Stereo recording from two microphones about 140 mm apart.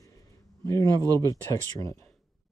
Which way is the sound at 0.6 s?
25° left (ahead or behind).